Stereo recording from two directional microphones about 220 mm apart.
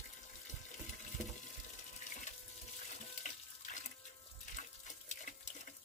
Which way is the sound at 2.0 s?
35° left (ahead or behind).